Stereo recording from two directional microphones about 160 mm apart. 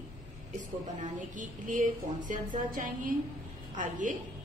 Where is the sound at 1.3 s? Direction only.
55° right (ahead or behind).